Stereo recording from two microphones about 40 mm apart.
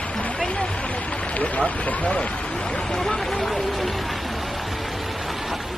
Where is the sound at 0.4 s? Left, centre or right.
Left.